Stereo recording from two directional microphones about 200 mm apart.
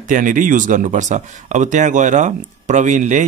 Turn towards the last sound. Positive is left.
turn(degrees=-40)  # may be behind; listen again after turning